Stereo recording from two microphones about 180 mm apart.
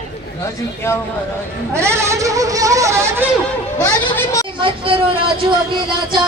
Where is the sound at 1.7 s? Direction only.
15° right (ahead or behind).